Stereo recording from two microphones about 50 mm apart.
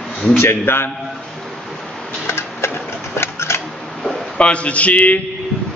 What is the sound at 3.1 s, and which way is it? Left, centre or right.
Scissors, left.